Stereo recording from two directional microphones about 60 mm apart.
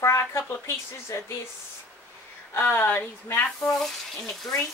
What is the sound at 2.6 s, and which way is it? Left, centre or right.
Speech, left.